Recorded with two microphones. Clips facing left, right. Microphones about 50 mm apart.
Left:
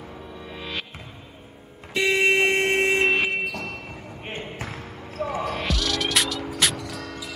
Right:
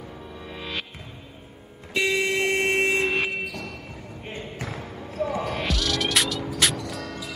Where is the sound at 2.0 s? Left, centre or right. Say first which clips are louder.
Left 5 dB; left.